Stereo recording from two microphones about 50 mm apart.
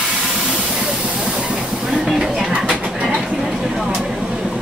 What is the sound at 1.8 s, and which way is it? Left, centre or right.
Vehicle, centre.